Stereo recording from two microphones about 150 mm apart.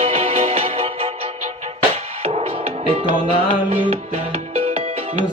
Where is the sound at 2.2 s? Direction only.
40° right (ahead or behind).